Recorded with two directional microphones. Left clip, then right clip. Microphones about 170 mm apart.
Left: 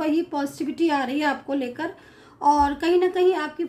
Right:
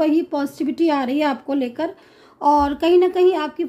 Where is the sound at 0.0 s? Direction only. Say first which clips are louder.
Right 5 dB; 35° right (ahead or behind).